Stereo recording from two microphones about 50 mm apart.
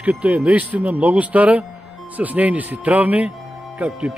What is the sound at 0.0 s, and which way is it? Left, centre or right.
A man's voice, right.